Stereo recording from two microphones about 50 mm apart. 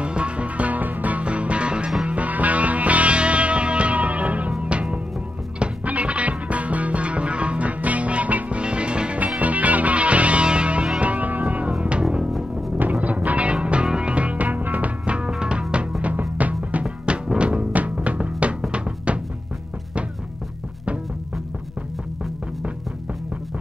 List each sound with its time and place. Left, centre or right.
0.0 s music: right
9.4 s music: right
12.0 s music: centre
12.3 s music: centre
13.0 s music: right